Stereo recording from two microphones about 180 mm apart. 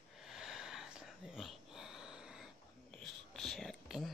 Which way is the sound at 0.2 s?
Centre (ahead or behind).